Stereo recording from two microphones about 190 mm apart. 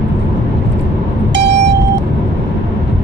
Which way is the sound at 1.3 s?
65° right (ahead or behind).